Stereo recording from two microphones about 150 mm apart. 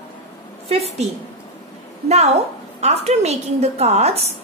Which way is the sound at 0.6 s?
45° right (ahead or behind).